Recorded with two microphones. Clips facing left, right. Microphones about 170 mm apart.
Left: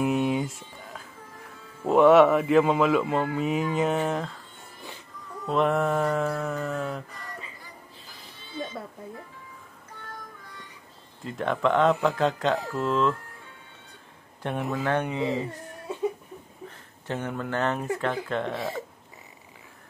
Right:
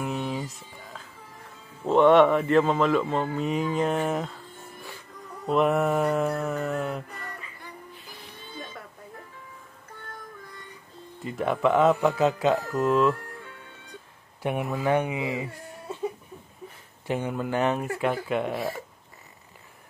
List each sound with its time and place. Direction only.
0.0 s music: 10° left (ahead or behind)
1.9 s speech: 5° left (ahead or behind)
5.5 s speech: 5° right (ahead or behind)
11.2 s speech: 5° right (ahead or behind)
14.4 s speech: 10° right (ahead or behind)
17.1 s speech: 10° right (ahead or behind)